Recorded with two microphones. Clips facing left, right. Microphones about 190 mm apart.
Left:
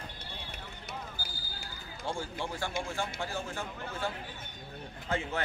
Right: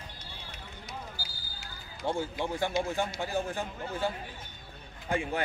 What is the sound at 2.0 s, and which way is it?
Speech, 20° right (ahead or behind).